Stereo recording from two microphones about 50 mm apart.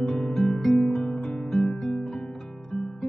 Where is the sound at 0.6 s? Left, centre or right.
Centre.